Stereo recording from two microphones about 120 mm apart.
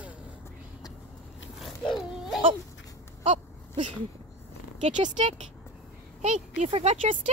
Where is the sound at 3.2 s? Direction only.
80° right.